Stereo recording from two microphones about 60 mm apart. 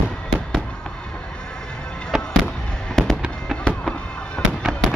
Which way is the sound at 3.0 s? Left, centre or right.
Centre.